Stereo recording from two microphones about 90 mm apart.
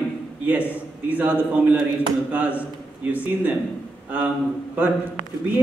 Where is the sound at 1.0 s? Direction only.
15° right (ahead or behind).